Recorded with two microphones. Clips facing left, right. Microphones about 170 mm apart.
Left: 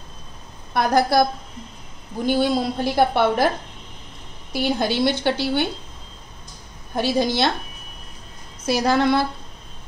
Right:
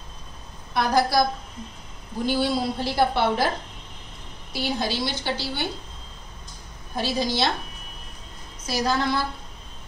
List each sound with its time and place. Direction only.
0.7 s a woman's voice: 55° left (ahead or behind)
2.2 s a woman's voice: 50° left (ahead or behind)
4.5 s a woman's voice: 55° left (ahead or behind)
7.0 s a woman's voice: 55° left (ahead or behind)
8.6 s a woman's voice: 60° left (ahead or behind)